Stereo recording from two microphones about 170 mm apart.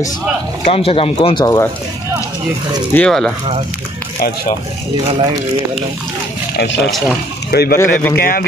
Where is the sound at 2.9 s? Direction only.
5° left (ahead or behind).